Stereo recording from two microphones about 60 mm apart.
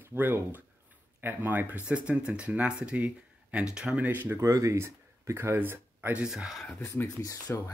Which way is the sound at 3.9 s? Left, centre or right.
Right.